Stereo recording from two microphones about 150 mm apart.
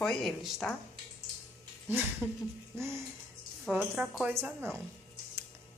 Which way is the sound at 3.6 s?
5° right (ahead or behind).